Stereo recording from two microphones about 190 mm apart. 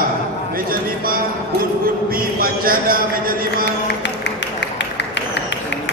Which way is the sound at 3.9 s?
65° left (ahead or behind).